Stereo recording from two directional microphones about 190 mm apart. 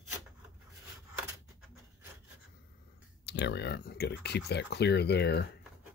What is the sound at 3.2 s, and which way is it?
Speech, 60° left (ahead or behind).